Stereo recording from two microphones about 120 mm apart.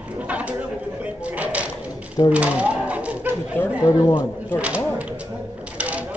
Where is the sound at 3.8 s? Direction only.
35° left (ahead or behind).